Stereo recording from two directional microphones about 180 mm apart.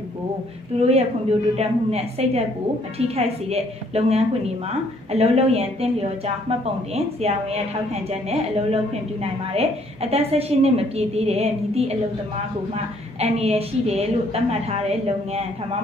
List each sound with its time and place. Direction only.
0.7 s a woman's voice: 35° right (ahead or behind)